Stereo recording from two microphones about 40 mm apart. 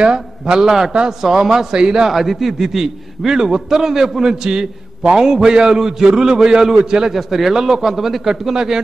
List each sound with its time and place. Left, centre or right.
0.0 s a man's voice: right
0.7 s speech: centre
2.0 s a man's voice: centre
3.3 s speech: centre
7.1 s speech: centre
8.5 s speech: centre